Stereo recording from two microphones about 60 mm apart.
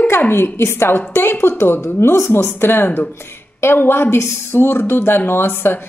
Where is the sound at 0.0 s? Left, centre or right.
Left.